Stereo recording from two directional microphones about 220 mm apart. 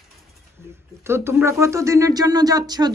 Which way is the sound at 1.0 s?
10° right (ahead or behind).